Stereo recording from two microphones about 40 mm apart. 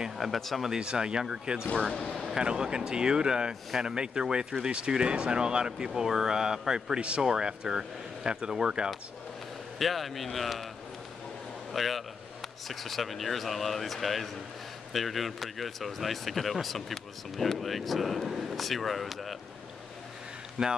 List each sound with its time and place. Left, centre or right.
0.2 s speech: centre
0.7 s speech: centre
2.0 s speech: centre
2.3 s speech: centre
9.8 s speech: centre
11.7 s a man's voice: centre
20.6 s speech: right